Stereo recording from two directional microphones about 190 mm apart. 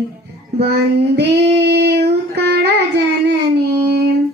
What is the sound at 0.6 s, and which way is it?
Child singing, 60° right (ahead or behind).